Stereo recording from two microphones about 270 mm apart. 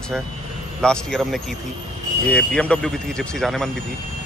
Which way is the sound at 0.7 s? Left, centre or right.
Centre.